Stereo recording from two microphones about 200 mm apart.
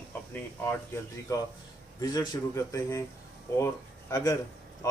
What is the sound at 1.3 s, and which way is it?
A man's voice, 15° left (ahead or behind).